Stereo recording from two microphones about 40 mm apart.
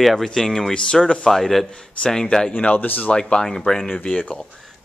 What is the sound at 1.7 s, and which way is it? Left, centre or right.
Speech, centre.